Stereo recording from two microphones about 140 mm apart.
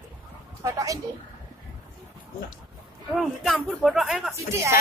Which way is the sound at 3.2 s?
Centre (ahead or behind).